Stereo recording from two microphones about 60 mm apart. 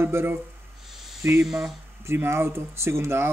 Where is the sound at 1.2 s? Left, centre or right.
Right.